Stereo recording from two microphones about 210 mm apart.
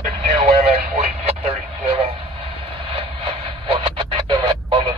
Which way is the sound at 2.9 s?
25° right (ahead or behind).